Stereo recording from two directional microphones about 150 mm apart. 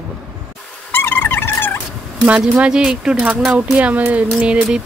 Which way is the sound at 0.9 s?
15° left (ahead or behind).